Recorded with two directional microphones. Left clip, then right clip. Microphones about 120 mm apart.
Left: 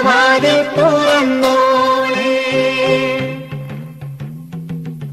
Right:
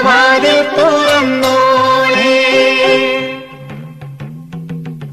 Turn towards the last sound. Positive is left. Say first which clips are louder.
# right 4 dB
turn(degrees=25)  # may be behind; listen again after turning